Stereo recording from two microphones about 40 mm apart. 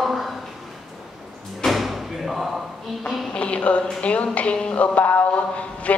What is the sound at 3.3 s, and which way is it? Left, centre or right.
Speech, left.